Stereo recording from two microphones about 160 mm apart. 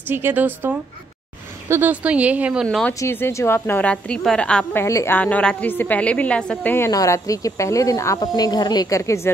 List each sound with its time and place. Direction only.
0.1 s a woman's voice: 10° right (ahead or behind)
2.9 s a woman's voice: 15° left (ahead or behind)
4.8 s a woman's voice: 15° left (ahead or behind)